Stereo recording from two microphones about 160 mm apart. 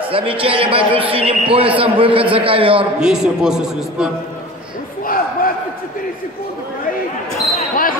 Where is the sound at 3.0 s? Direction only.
5° right (ahead or behind).